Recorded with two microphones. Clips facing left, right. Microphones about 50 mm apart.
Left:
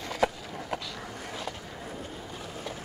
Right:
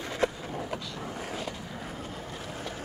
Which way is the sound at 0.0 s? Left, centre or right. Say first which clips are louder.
Left 1 dB; right.